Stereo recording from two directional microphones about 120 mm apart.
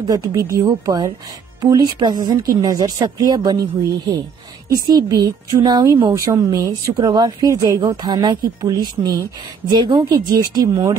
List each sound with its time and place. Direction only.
0.0 s speech: 30° right (ahead or behind)
4.8 s speech: 35° right (ahead or behind)
6.1 s speech: 30° right (ahead or behind)